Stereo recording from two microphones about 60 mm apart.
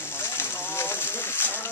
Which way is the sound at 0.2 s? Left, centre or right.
Left.